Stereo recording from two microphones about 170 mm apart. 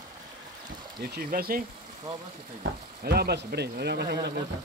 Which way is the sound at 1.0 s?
60° right (ahead or behind).